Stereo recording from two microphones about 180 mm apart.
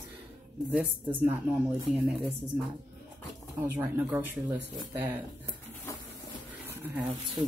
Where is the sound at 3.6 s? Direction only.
10° right (ahead or behind).